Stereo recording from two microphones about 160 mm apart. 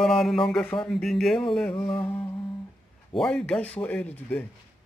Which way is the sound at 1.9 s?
35° left (ahead or behind).